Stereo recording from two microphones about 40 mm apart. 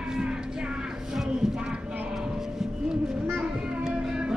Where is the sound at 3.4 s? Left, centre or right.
Right.